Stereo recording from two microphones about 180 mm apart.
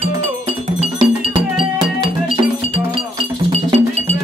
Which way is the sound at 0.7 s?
25° right (ahead or behind).